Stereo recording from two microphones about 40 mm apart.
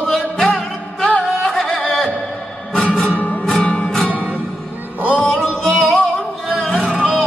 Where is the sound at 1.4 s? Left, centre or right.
Centre.